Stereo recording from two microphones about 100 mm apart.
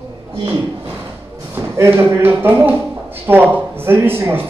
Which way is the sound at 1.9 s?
20° right (ahead or behind).